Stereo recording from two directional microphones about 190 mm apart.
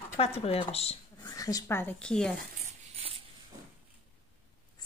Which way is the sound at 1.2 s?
20° left (ahead or behind).